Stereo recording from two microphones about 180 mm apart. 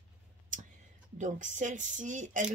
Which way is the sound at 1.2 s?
45° right (ahead or behind).